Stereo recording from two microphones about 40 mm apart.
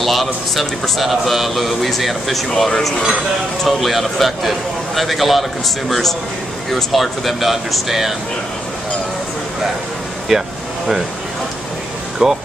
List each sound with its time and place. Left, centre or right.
0.0 s a man's voice: centre
10.3 s a man's voice: centre
12.2 s speech: right